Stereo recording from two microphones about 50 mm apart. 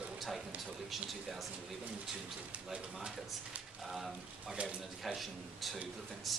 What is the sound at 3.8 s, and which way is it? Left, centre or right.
A man's voice, centre.